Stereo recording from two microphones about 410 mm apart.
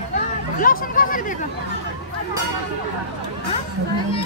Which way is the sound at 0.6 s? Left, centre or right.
Centre.